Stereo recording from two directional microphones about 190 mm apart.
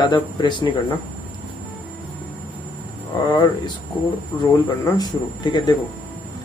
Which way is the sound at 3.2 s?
20° left (ahead or behind).